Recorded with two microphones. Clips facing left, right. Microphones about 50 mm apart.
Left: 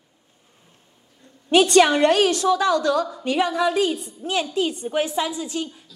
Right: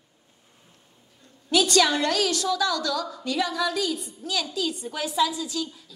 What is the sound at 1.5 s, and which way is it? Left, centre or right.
A woman's voice, left.